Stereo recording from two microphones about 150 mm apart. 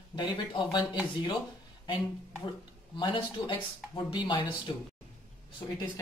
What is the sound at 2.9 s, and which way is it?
Speech, 35° left (ahead or behind).